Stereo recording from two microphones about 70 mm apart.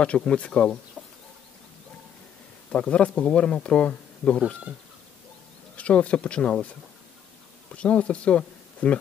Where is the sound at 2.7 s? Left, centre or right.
Centre.